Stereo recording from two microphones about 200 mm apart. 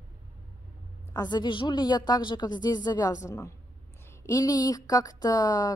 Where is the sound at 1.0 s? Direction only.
20° left (ahead or behind).